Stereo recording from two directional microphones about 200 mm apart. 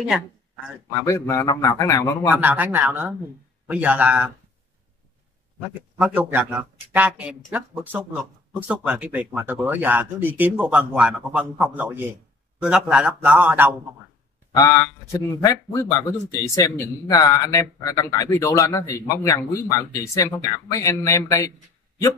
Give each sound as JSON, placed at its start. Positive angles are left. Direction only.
{"t": 0.9, "sound": "a man's voice", "side_deg": 15}
{"t": 2.3, "sound": "speech", "side_deg": -10}
{"t": 5.8, "sound": "speech", "side_deg": -5}
{"t": 14.5, "sound": "a man's voice", "side_deg": 15}